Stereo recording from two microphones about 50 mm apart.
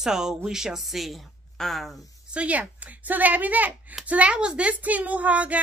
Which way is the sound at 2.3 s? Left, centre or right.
Right.